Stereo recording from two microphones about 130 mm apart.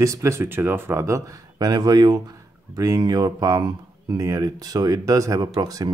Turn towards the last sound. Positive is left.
turn(degrees=-30)  # may be behind; listen again after turning